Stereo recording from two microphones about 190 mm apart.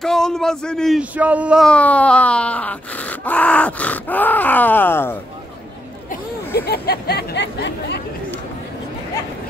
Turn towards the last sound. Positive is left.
turn(degrees=65)  # may be behind; listen again after turning